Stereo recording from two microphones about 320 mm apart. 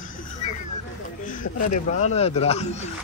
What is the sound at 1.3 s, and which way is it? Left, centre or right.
Speech, left.